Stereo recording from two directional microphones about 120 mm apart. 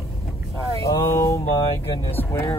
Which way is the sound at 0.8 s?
25° left (ahead or behind).